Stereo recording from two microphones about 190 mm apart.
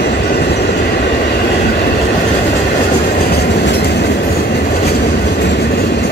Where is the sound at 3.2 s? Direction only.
55° left (ahead or behind).